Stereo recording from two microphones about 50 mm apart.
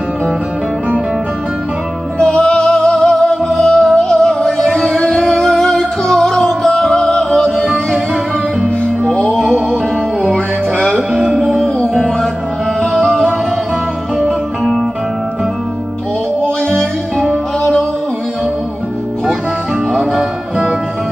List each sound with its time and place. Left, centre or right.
2.1 s music: centre
9.1 s music: left
11.3 s music: centre
19.9 s music: centre